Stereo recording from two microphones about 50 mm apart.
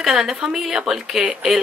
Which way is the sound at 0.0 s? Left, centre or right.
Centre.